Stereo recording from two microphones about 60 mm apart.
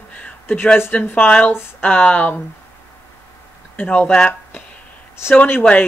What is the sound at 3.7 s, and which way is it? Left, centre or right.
Speech, left.